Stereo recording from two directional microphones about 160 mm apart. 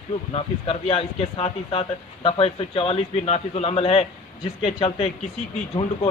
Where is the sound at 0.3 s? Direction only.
40° left (ahead or behind).